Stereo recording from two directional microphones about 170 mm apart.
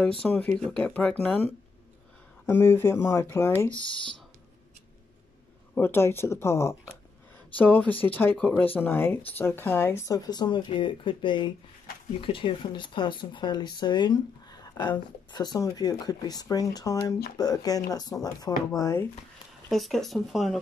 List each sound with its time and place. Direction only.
0.2 s speech: 5° left (ahead or behind)
2.4 s speech: 15° left (ahead or behind)
5.8 s speech: 15° left (ahead or behind)
19.7 s speech: centre (ahead or behind)